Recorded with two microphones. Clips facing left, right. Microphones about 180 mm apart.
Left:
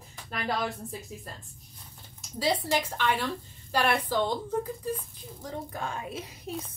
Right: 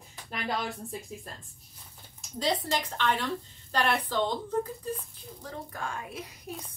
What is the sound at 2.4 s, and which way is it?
A woman's voice, 10° left (ahead or behind).